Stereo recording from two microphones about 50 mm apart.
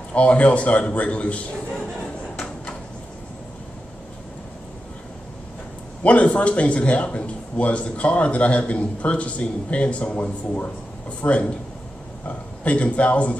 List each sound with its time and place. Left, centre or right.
0.1 s speech: left
6.0 s speech: left